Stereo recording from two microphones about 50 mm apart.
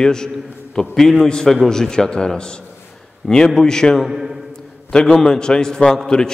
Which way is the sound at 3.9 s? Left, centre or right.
Centre.